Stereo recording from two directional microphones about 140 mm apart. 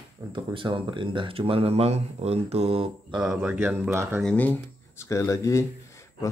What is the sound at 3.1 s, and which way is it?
Speech, 5° right (ahead or behind).